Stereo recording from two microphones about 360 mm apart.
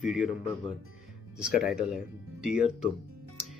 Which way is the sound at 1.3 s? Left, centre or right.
Centre.